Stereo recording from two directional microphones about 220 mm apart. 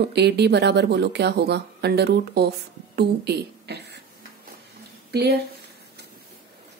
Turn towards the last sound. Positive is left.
turn(degrees=-50)  # may be behind; listen again after turning